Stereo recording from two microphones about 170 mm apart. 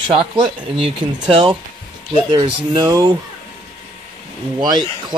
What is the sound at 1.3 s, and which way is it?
Speech, 30° right (ahead or behind).